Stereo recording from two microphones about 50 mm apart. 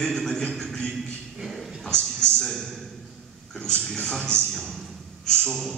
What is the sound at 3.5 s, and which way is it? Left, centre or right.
A man's voice, centre.